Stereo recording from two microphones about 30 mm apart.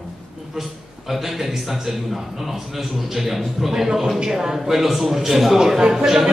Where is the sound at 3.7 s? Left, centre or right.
Centre.